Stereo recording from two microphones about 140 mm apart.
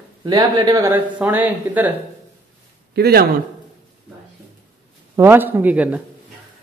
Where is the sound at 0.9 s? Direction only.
15° right (ahead or behind).